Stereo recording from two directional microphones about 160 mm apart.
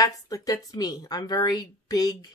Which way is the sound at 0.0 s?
20° left (ahead or behind).